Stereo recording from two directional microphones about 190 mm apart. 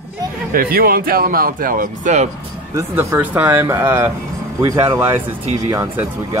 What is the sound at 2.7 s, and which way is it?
Speech, 10° right (ahead or behind).